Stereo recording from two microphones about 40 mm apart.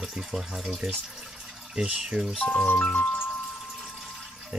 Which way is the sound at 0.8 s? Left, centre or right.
Right.